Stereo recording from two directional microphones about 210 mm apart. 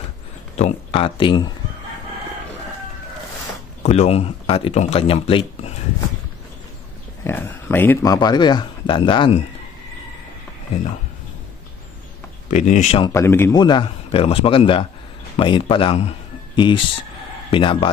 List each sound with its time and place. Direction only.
0.6 s speech: 30° left (ahead or behind)
3.8 s speech: 30° left (ahead or behind)
7.2 s speech: 10° left (ahead or behind)
12.4 s speech: 35° left (ahead or behind)
13.1 s a man's voice: 10° left (ahead or behind)